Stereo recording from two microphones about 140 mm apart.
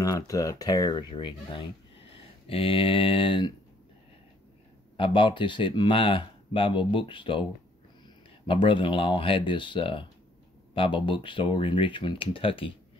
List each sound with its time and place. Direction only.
0.0 s speech: 25° left (ahead or behind)
4.9 s speech: 35° left (ahead or behind)
8.5 s speech: 35° left (ahead or behind)